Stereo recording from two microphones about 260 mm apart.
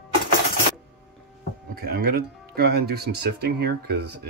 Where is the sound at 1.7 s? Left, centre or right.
Right.